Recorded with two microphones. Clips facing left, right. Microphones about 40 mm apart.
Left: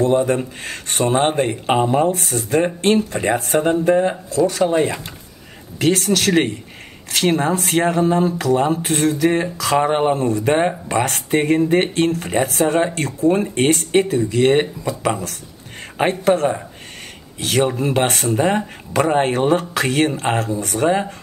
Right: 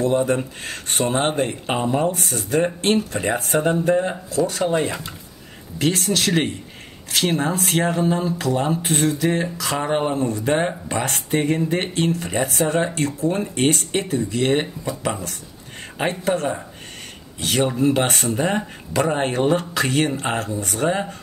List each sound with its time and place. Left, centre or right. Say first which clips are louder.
0.0 s speech: left 3 dB; left
4.7 s speech: left 4 dB; left
5.8 s speech: left 4 dB; left
20.4 s speech: left 4 dB; left
20.7 s speech: left 4 dB; left